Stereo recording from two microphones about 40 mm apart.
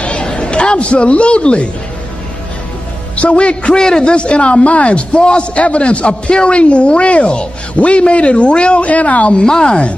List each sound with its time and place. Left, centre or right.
0.0 s a sound: left
3.2 s a man's voice: left
9.4 s a man's voice: left